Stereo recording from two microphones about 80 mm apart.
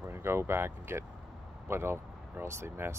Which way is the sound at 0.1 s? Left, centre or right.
Right.